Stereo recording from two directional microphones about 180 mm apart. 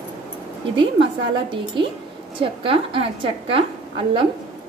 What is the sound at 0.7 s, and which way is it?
Speech, 85° right.